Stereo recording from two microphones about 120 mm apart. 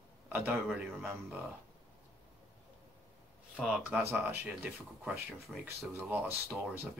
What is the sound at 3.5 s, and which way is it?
Speech, 10° right (ahead or behind).